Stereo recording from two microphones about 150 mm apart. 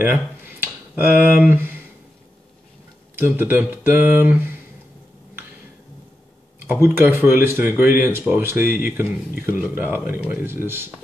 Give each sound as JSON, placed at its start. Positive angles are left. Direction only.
{"t": 0.0, "sound": "a sound", "side_deg": -15}
{"t": 3.2, "sound": "speech", "side_deg": -15}
{"t": 6.7, "sound": "speech", "side_deg": -15}